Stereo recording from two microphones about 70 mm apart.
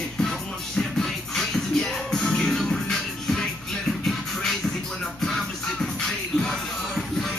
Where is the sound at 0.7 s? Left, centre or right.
Centre.